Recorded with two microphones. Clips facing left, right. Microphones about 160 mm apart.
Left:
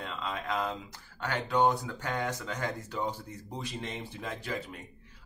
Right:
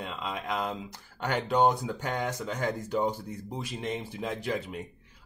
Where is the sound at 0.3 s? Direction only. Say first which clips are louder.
Even; 15° right (ahead or behind).